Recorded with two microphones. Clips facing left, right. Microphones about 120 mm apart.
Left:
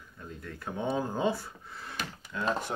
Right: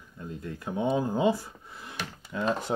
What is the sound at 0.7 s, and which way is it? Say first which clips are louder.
Speech: right 4 dB; 10° right (ahead or behind).